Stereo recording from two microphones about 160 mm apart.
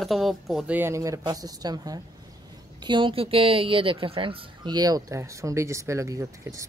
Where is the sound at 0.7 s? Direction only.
15° right (ahead or behind).